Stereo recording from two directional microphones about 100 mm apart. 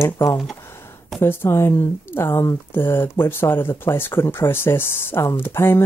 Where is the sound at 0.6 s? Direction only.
25° left (ahead or behind).